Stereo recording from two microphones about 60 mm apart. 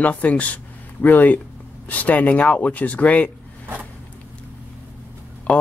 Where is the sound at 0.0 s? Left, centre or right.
Left.